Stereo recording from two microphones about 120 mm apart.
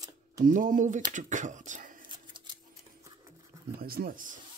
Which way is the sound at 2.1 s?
40° right (ahead or behind).